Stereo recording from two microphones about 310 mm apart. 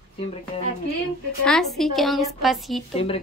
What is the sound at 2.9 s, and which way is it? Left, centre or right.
Speech, centre.